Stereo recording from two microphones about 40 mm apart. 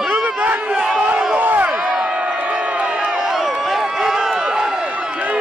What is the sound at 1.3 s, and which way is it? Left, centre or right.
Crowd, right.